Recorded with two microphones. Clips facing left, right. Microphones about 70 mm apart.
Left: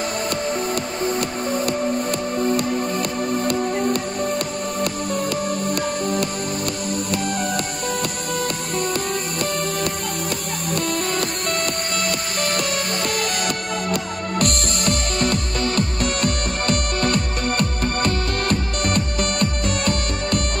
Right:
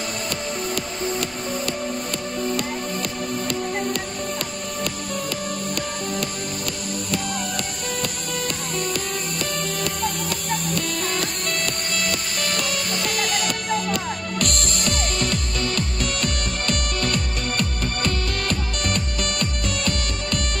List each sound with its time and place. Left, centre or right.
3.4 s music: left
14.4 s music: left